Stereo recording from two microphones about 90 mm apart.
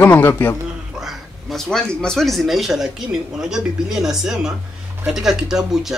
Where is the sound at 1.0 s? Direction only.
Centre (ahead or behind).